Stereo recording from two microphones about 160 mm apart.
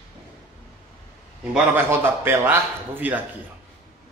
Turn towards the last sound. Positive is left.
turn(degrees=-10)  # may be behind; listen again after turning